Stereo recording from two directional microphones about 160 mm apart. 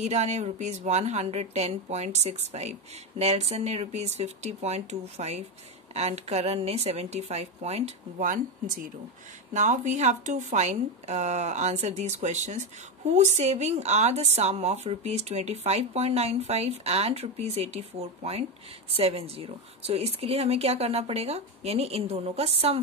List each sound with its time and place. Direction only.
0.0 s speech: 45° right (ahead or behind)
8.3 s speech: 60° right (ahead or behind)
9.5 s speech: 50° right (ahead or behind)